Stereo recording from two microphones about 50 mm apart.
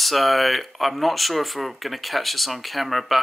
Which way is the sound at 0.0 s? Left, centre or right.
Centre.